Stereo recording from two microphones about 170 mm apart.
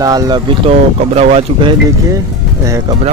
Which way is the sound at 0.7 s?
40° right (ahead or behind).